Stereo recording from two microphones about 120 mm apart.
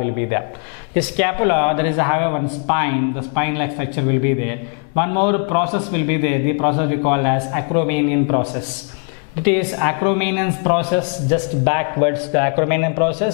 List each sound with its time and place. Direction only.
0.9 s a man's voice: 10° left (ahead or behind)